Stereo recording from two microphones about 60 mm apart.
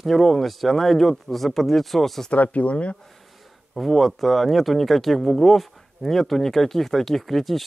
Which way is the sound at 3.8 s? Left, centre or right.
Centre.